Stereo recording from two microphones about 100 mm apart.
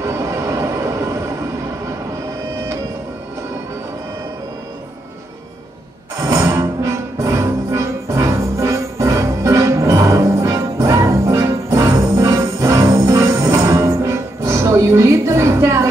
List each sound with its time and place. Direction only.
0.0 s vehicle: 25° right (ahead or behind)
6.2 s music: 30° right (ahead or behind)